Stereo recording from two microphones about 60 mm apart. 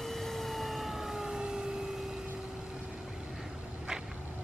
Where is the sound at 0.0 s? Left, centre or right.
Centre.